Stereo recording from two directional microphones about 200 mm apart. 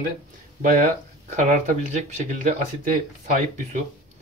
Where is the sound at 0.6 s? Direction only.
45° right (ahead or behind).